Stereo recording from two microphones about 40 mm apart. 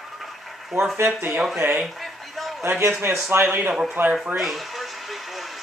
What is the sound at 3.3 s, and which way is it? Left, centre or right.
Speech, right.